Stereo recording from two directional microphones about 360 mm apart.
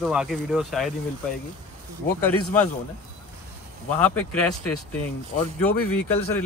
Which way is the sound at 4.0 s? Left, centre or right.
Centre.